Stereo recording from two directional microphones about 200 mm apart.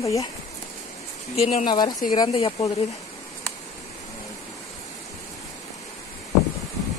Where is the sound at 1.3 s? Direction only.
35° left (ahead or behind).